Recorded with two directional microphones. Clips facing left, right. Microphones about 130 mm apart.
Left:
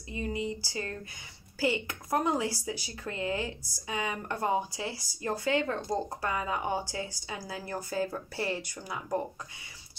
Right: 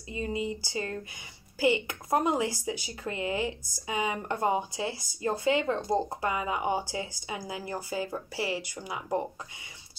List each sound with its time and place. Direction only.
0.1 s speech: 20° right (ahead or behind)